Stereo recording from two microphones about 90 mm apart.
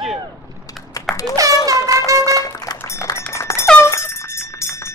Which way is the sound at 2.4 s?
40° left (ahead or behind).